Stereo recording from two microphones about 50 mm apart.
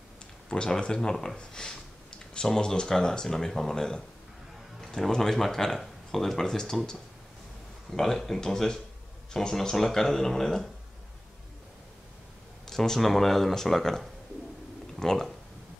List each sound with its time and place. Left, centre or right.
0.5 s speech: centre
7.9 s speech: centre
12.6 s speech: centre